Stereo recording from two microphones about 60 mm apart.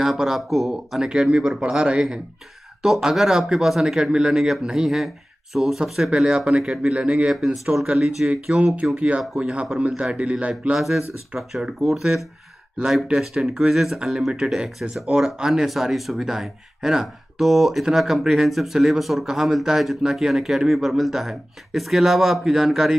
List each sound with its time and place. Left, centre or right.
0.0 s speech: centre
1.0 s speech: centre
7.3 s speech: centre
8.3 s speech: right
10.8 s speech: centre